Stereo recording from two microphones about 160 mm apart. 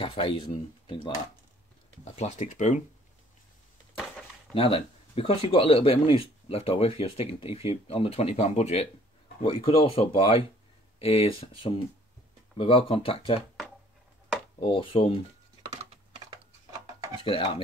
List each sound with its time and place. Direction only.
0.0 s speech: 35° left (ahead or behind)
2.1 s speech: 45° left (ahead or behind)
4.6 s speech: 35° left (ahead or behind)
14.6 s speech: 35° left (ahead or behind)
17.2 s speech: 35° left (ahead or behind)